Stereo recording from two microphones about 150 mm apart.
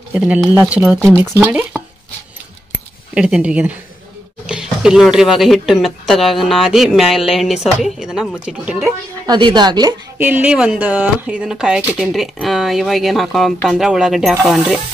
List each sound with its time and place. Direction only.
0.1 s speech: 10° right (ahead or behind)
1.5 s stir: 10° right (ahead or behind)
3.2 s speech: 5° right (ahead or behind)
9.2 s a woman's voice: 30° right (ahead or behind)
10.1 s speech: 10° right (ahead or behind)